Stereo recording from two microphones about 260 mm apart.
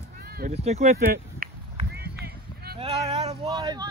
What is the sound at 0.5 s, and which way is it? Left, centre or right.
Speech, right.